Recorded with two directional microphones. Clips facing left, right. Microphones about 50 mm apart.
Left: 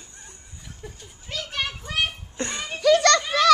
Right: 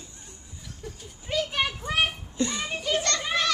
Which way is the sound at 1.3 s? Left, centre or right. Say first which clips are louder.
Right 3 dB; centre.